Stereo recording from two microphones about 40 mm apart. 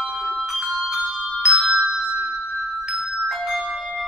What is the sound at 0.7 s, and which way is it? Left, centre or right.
Bell, centre.